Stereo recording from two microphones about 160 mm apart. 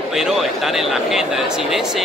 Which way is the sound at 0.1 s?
5° right (ahead or behind).